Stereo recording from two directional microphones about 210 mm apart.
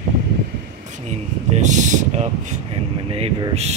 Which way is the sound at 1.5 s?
35° right (ahead or behind).